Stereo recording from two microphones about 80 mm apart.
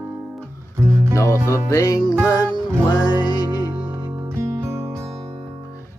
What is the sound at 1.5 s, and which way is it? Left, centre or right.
Music, left.